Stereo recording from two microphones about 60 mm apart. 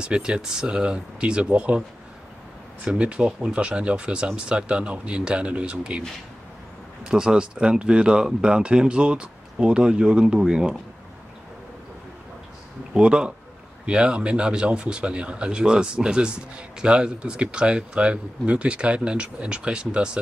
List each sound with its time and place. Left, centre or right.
0.0 s speech: centre
7.1 s speech: centre
12.9 s speech: centre